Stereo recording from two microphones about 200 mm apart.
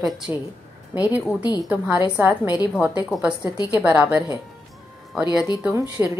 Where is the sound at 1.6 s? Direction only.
5° right (ahead or behind).